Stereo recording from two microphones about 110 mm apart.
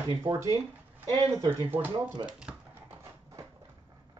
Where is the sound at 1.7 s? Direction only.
20° right (ahead or behind).